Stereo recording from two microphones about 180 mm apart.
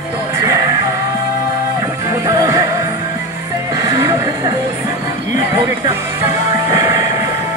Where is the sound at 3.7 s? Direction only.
20° right (ahead or behind).